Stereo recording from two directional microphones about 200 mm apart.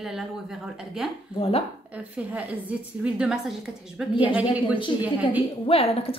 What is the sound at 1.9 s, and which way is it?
A woman's voice, 5° right (ahead or behind).